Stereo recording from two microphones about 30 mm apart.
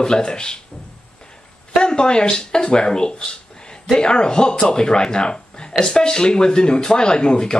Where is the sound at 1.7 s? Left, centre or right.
Left.